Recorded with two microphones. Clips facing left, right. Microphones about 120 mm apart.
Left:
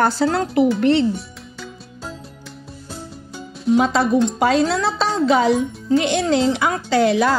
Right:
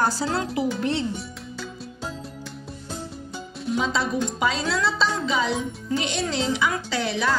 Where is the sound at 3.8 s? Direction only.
60° left (ahead or behind).